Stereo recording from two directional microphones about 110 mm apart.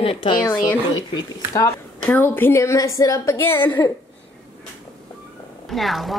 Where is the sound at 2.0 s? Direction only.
15° left (ahead or behind).